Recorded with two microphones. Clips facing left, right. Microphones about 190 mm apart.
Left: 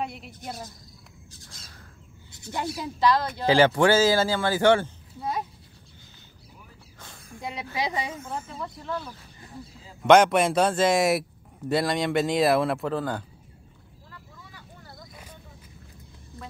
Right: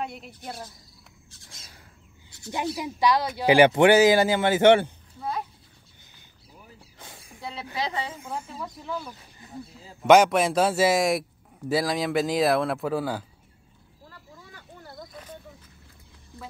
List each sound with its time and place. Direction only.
0.0 s speech: centre (ahead or behind)
2.5 s speech: 15° right (ahead or behind)
7.0 s snake: 15° right (ahead or behind)
7.3 s snake: 15° left (ahead or behind)
7.7 s speech: 15° left (ahead or behind)
8.3 s speech: centre (ahead or behind)